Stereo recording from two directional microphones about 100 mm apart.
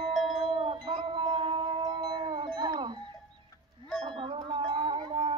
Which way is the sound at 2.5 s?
45° right (ahead or behind).